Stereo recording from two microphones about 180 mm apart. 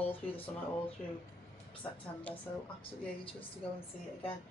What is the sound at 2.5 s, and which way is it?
Speech, 20° left (ahead or behind).